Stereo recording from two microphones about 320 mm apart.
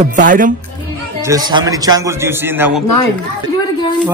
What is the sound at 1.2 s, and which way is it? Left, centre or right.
A man's voice, centre.